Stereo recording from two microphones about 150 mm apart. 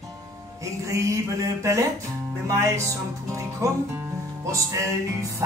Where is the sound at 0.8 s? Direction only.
20° right (ahead or behind).